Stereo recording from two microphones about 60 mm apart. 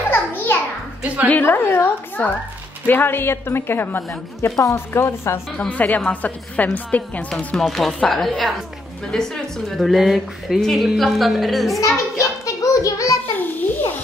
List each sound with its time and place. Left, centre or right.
0.1 s a sound: left
1.0 s a woman's voice: right
1.4 s a woman's voice: left
5.7 s a woman's voice: left
7.5 s a woman's voice: centre
12.4 s music: left
13.4 s a sound: left